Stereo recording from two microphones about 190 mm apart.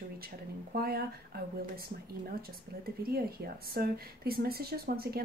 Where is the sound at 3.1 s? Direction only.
55° right (ahead or behind).